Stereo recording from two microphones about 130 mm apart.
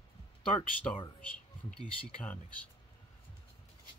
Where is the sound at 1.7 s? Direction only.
5° left (ahead or behind).